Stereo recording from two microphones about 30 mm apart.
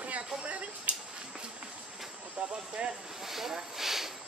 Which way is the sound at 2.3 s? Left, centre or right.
Right.